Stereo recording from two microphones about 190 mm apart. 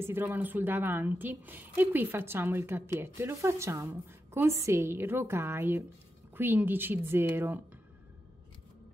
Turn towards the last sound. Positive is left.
turn(degrees=-10)  # may be behind; listen again after turning